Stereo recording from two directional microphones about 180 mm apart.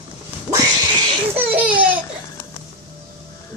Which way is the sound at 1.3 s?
10° right (ahead or behind).